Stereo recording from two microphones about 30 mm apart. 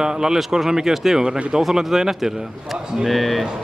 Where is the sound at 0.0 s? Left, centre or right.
Right.